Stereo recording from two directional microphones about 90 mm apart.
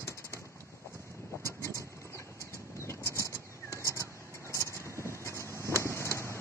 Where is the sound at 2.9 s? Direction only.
35° left (ahead or behind).